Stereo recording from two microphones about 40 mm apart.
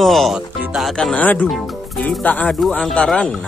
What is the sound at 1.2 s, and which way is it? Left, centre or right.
Speech, left.